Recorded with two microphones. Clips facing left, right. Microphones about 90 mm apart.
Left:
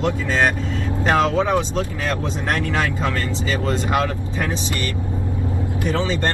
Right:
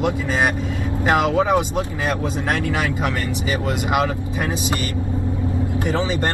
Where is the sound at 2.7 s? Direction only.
15° right (ahead or behind).